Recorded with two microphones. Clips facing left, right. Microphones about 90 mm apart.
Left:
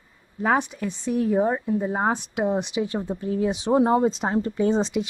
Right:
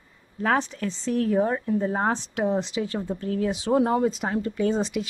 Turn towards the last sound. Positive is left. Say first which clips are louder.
# left 2 dB
turn(degrees=20)  # may be behind; listen again after turning